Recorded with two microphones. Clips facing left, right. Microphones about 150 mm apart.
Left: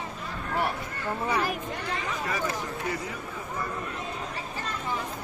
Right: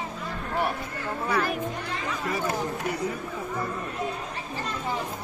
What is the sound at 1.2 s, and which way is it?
Speech, 10° left (ahead or behind).